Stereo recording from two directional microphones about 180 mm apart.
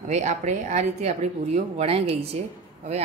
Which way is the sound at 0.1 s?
40° right (ahead or behind).